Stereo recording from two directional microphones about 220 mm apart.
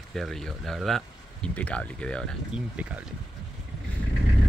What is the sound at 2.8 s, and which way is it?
Speech, 5° right (ahead or behind).